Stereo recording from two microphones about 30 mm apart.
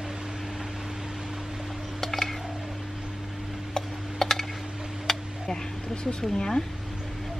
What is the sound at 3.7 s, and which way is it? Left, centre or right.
Tick, centre.